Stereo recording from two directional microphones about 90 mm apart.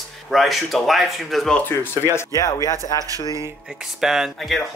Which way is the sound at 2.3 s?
40° left (ahead or behind).